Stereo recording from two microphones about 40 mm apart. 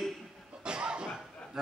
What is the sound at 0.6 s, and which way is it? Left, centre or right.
Cough, right.